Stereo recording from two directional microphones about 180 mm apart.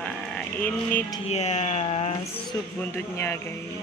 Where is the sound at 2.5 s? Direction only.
15° left (ahead or behind).